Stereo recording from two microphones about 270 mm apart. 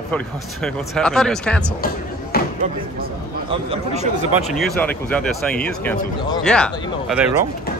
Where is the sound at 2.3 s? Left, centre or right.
Left.